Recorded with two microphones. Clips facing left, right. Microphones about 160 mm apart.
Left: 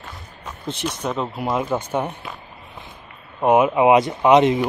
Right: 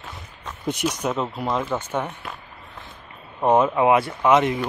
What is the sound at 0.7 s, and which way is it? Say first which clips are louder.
A man's voice: right 2 dB; 10° right (ahead or behind).